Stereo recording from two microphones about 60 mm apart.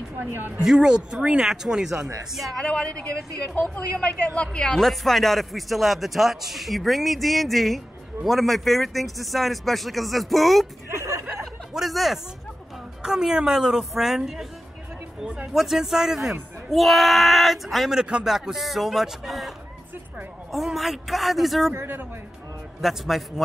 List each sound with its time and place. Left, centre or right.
0.2 s speech: right
0.7 s a woman's voice: centre
2.3 s speech: centre
2.6 s a woman's voice: centre
4.4 s a woman's voice: centre
4.8 s speech: centre
11.0 s speech: right
11.7 s a woman's voice: centre
15.5 s a woman's voice: centre
20.5 s speech: centre
21.7 s speech: right
22.8 s speech: centre